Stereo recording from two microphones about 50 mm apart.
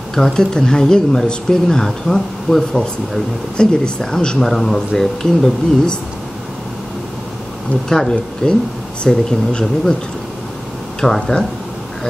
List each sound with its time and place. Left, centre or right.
0.1 s speech: centre
7.9 s speech: centre
11.0 s speech: centre